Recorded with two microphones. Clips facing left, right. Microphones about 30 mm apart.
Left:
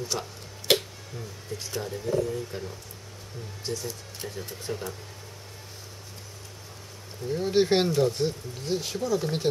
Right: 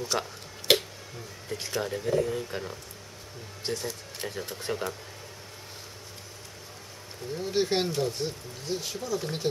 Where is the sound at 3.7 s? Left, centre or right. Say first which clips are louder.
Right 1 dB; right.